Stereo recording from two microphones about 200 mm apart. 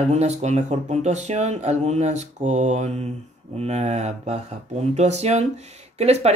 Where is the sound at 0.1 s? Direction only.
35° right (ahead or behind).